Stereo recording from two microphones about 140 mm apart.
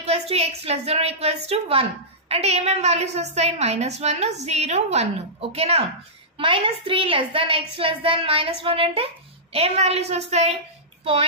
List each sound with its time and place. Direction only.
0.0 s a woman's voice: 50° right (ahead or behind)
6.3 s a woman's voice: 35° right (ahead or behind); by 10.4 s 50° right (ahead or behind)